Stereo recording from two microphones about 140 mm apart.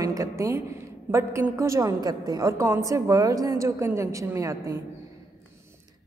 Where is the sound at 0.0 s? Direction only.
25° right (ahead or behind).